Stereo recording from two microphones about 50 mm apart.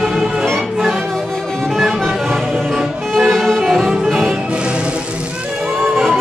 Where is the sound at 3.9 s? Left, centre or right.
Centre.